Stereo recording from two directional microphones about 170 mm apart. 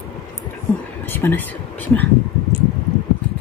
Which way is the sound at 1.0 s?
10° left (ahead or behind).